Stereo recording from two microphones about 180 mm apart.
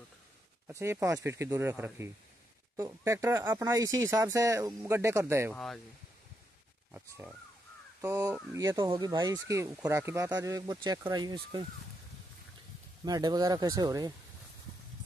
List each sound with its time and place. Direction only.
0.7 s speech: 15° right (ahead or behind)
5.5 s speech: centre (ahead or behind)
6.9 s speech: 10° right (ahead or behind)
13.0 s speech: 20° right (ahead or behind)